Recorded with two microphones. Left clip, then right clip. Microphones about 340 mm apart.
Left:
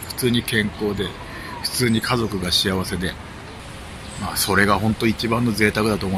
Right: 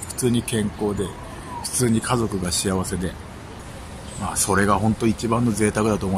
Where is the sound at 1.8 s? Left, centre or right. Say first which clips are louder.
Left 1 dB; centre.